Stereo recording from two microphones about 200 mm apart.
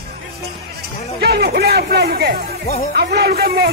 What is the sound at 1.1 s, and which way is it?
Speech, 50° right (ahead or behind).